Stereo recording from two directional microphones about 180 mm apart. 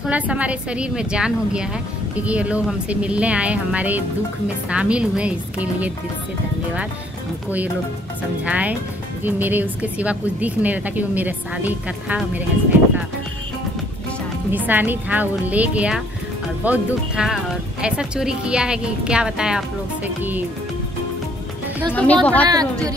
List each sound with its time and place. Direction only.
0.0 s a woman's voice: 5° right (ahead or behind)
8.5 s a woman's voice: 10° right (ahead or behind)
14.5 s a woman's voice: 10° right (ahead or behind)
21.9 s a woman's voice: 5° left (ahead or behind)
22.5 s speech: 20° right (ahead or behind)